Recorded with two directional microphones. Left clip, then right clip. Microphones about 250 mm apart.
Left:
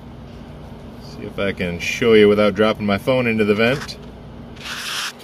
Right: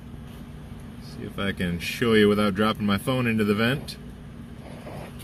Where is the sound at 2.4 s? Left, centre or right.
Right.